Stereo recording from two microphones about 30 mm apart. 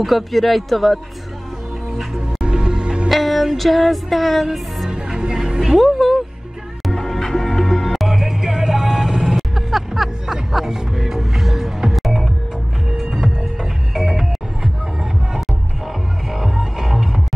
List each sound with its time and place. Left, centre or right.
0.0 s speech: centre
2.4 s music: right
3.1 s music: centre
4.8 s music: right
5.8 s speech: centre
6.9 s music: centre
8.1 s vehicle: centre
9.2 s music: centre
16.3 s music: centre